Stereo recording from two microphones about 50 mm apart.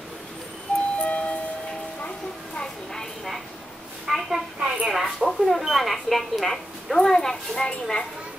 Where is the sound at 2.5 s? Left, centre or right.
Centre.